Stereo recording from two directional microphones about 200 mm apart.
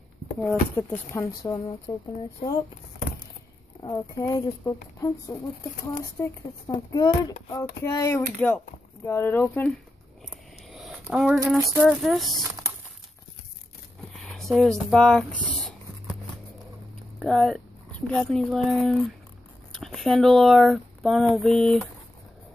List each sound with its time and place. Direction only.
0.4 s speech: 10° left (ahead or behind)
1.4 s speech: 20° left (ahead or behind)
3.8 s speech: 20° left (ahead or behind)
6.1 s speech: 15° left (ahead or behind)
10.3 s speech: centre (ahead or behind)
14.1 s speech: centre (ahead or behind)
17.2 s speech: centre (ahead or behind)